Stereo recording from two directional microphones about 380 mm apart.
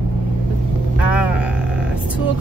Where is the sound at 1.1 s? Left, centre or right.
Centre.